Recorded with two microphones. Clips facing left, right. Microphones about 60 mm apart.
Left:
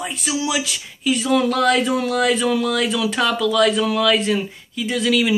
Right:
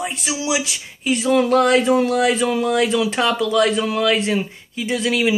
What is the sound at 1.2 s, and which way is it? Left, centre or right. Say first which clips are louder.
Speech: right 3 dB; right.